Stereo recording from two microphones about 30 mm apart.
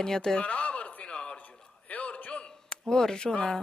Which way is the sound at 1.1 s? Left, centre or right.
Left.